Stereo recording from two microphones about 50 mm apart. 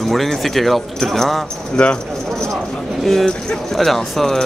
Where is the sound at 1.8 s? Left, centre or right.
Centre.